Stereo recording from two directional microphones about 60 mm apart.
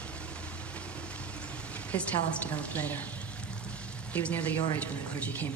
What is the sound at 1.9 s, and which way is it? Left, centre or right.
Speech, left.